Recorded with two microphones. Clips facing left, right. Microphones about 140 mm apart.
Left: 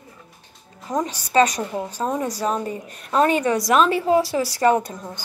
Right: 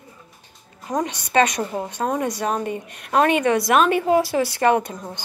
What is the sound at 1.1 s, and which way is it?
A woman's voice, 35° left (ahead or behind).